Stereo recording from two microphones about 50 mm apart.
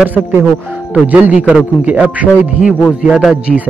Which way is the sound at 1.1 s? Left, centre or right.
Right.